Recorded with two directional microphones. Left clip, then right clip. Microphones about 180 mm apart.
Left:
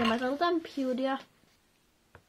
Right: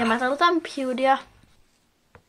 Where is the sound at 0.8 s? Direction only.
25° left (ahead or behind).